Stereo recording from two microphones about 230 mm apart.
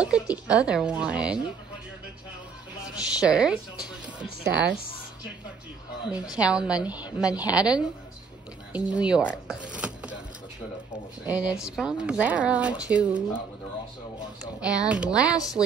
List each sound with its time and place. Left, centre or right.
0.0 s speech: centre
2.8 s speech: centre
4.6 s speech: right
6.0 s speech: centre
9.5 s zipper: centre
11.2 s speech: centre
14.6 s speech: centre